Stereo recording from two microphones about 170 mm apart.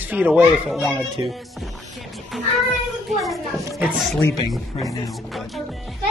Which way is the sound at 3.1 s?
Centre (ahead or behind).